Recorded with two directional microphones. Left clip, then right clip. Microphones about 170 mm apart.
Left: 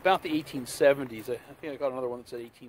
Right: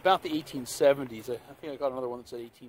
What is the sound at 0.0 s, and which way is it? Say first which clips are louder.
Speech: even; 20° right (ahead or behind).